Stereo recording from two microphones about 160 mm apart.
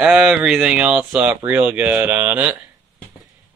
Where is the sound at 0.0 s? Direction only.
5° right (ahead or behind).